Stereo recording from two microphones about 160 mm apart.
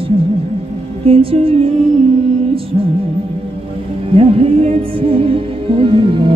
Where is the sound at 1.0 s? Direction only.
35° right (ahead or behind).